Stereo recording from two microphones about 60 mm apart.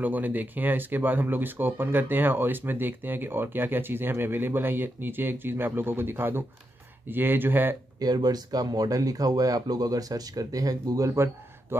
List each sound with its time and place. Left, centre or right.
0.0 s speech: right
8.0 s speech: right
11.7 s a sound: right